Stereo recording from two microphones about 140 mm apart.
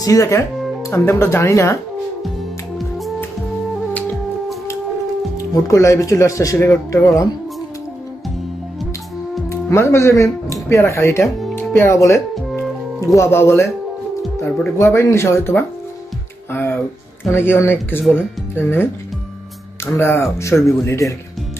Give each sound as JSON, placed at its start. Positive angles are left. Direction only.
{"t": 0.0, "sound": "speech", "side_deg": 25}
{"t": 5.4, "sound": "speech", "side_deg": 25}
{"t": 9.5, "sound": "speech", "side_deg": 20}
{"t": 19.9, "sound": "speech", "side_deg": 20}